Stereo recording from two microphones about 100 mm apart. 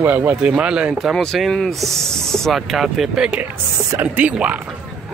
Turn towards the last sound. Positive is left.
turn(degrees=-15)  # may be behind; listen again after turning